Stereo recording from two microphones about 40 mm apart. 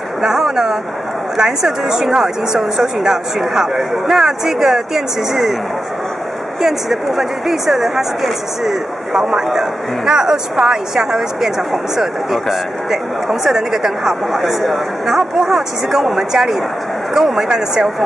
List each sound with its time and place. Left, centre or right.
0.2 s speech: centre
6.6 s speech: centre